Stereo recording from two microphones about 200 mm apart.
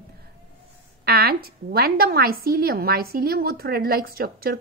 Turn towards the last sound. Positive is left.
turn(degrees=-50)  # may be behind; listen again after turning